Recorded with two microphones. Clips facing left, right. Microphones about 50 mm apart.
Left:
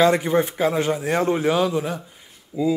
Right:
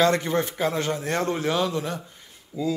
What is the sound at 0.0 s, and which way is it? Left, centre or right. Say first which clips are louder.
Speech: left 4 dB; centre.